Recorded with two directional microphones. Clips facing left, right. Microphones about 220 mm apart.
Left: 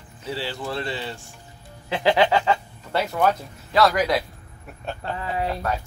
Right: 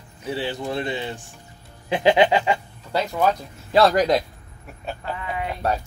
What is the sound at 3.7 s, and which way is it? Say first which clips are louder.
Speech: right 3 dB; 30° right (ahead or behind).